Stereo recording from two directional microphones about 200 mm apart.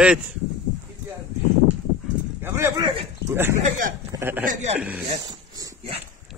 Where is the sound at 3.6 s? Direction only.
40° right (ahead or behind).